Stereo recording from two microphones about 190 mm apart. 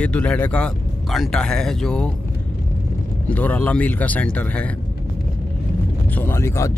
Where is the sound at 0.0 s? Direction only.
5° left (ahead or behind).